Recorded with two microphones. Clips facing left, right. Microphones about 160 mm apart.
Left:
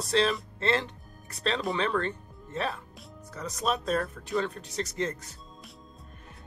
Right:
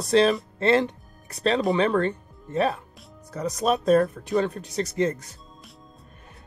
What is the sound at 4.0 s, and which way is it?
Speech, 20° right (ahead or behind).